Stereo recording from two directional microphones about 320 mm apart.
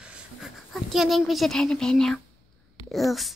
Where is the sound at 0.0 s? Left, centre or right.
Centre.